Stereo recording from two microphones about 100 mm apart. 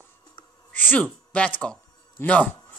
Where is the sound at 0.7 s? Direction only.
20° left (ahead or behind).